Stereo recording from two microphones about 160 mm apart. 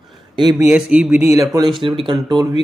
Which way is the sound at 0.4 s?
20° right (ahead or behind).